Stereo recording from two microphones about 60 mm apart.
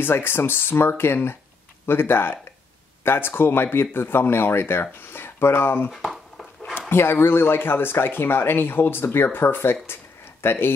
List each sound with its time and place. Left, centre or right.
0.0 s speech: left
5.9 s a sound: centre
6.9 s speech: left